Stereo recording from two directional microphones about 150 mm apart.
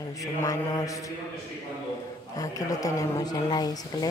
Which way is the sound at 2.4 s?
25° left (ahead or behind).